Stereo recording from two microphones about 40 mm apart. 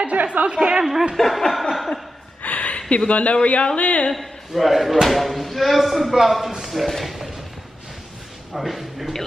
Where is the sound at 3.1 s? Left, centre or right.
Left.